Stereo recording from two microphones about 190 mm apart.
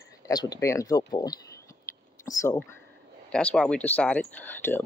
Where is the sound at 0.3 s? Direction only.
20° left (ahead or behind).